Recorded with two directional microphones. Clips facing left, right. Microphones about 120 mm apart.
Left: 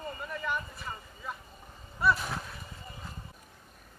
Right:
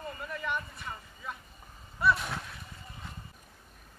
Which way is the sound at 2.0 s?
Centre (ahead or behind).